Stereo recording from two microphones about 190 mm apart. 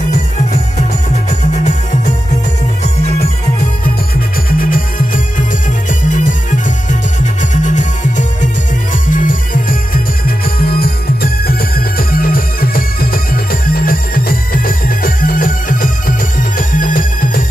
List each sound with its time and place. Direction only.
1.5 s music: 40° left (ahead or behind)
4.5 s music: 45° left (ahead or behind)